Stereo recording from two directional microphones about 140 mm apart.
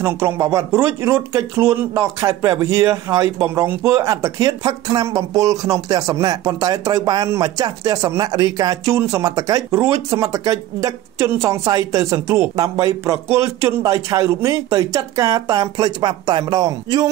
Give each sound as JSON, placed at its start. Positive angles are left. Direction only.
{"t": 0.0, "sound": "speech", "side_deg": -20}